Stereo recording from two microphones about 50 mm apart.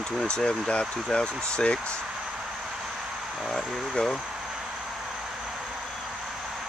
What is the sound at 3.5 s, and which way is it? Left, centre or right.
Speech, centre.